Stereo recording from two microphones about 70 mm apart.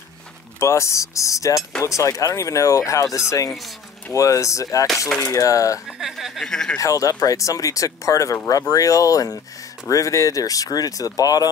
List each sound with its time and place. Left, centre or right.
0.6 s speech: left
5.9 s a sound: centre
6.4 s speech: centre
6.8 s speech: left